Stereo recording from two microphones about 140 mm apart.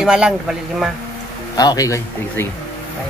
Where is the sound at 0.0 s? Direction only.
5° right (ahead or behind).